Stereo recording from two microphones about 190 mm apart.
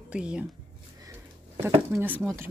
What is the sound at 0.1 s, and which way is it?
Speech, 5° right (ahead or behind).